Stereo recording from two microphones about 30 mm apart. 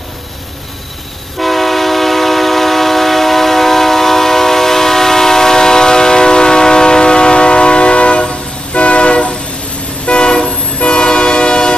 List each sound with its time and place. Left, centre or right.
1.4 s train: centre; by 9.3 s left
10.0 s vehicle: left